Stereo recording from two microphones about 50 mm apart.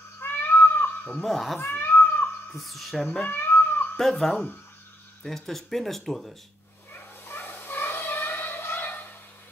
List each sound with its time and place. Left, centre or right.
0.2 s cat: left
1.2 s speech: centre
1.6 s cat: left
2.5 s speech: centre
3.3 s cat: left
4.0 s speech: centre
6.9 s a sound: left